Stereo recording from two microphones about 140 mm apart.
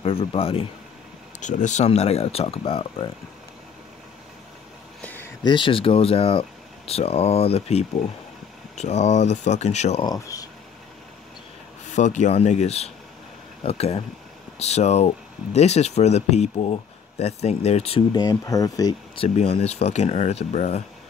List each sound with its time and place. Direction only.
0.0 s speech: 40° left (ahead or behind)
1.4 s speech: 60° left (ahead or behind)
1.9 s speech: 50° left (ahead or behind)
5.0 s a sound: 15° left (ahead or behind)
5.4 s speech: 35° left (ahead or behind); by 10.0 s 50° left (ahead or behind)
10.0 s speech: 25° left (ahead or behind)
11.9 s speech: 60° left (ahead or behind)
18.1 s speech: 25° left (ahead or behind)
19.1 s speech: 45° left (ahead or behind)